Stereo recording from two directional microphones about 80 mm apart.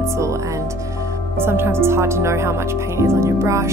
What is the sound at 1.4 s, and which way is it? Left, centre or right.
Speech, right.